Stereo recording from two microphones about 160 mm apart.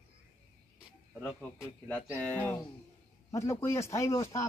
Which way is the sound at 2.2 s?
10° left (ahead or behind).